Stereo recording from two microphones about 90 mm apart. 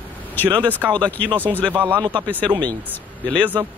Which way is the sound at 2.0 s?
60° right (ahead or behind).